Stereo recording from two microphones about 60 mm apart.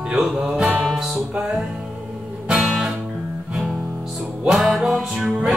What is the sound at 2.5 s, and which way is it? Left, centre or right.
Music, centre.